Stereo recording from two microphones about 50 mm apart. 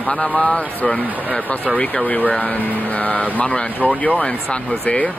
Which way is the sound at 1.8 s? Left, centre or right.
Centre.